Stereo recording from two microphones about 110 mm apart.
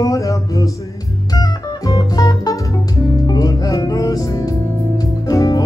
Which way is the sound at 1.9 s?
35° left (ahead or behind).